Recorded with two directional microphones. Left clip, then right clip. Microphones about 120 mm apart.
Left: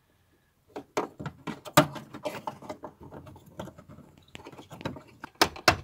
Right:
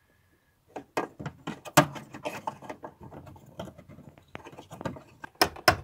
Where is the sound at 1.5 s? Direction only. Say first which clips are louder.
Even; centre (ahead or behind).